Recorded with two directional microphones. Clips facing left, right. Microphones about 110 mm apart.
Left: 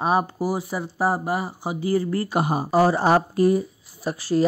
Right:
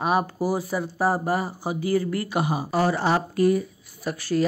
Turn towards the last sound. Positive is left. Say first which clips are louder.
# left 2 dB
turn(degrees=30)  # may be behind; listen again after turning